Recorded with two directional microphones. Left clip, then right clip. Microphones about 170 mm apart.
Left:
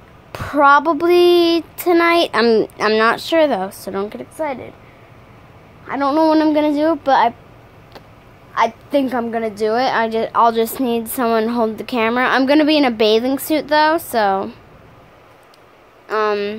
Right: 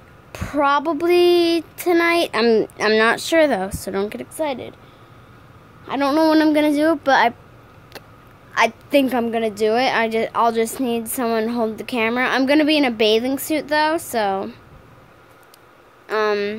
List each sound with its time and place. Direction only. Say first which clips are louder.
0.3 s a woman's voice: left 6 dB; centre (ahead or behind); by 4.6 s 20° right (ahead or behind)
5.9 s a woman's voice: left 2 dB; 20° right (ahead or behind)
8.5 s a woman's voice: even; 20° right (ahead or behind); by 14.6 s centre (ahead or behind)
16.1 s a sound: left 2 dB; 10° right (ahead or behind)